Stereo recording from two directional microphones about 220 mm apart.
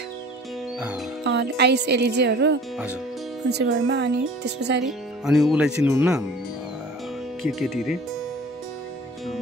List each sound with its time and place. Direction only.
1.2 s speech: 50° right (ahead or behind)
4.8 s speech: centre (ahead or behind)
7.4 s speech: centre (ahead or behind)